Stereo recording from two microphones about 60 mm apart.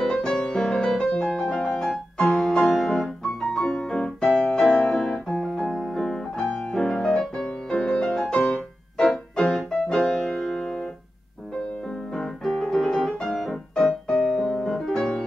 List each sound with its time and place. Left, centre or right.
0.0 s music: centre
5.1 s piano: centre
7.8 s music: centre
12.1 s music: centre